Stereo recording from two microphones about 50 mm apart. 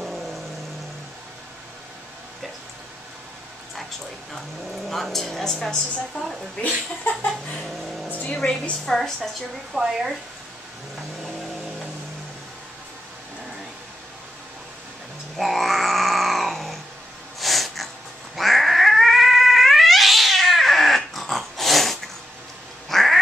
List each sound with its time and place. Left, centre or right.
0.0 s vehicle: centre
4.8 s a woman's voice: centre
7.6 s vehicle: centre
8.1 s a sound: left
8.4 s a woman's voice: centre
9.7 s speech: centre
15.3 s a sound: centre
17.4 s snort: centre
18.3 s cat: centre